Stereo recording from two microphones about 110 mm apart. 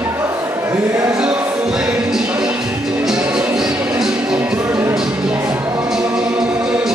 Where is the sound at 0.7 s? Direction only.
25° right (ahead or behind).